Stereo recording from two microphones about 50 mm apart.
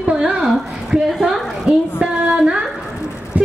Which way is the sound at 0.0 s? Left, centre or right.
Centre.